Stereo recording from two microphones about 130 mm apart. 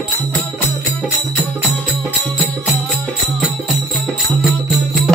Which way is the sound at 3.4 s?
Centre (ahead or behind).